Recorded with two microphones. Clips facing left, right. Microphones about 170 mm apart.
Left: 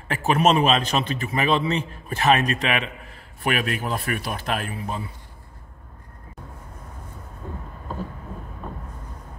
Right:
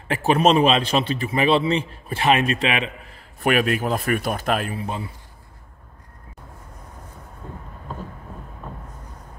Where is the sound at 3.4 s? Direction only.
45° right (ahead or behind).